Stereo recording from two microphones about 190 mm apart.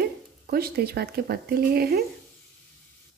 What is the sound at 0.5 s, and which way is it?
A woman's voice, 55° right (ahead or behind).